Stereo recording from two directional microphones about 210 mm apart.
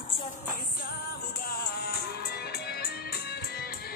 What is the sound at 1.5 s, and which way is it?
Music, 50° left (ahead or behind).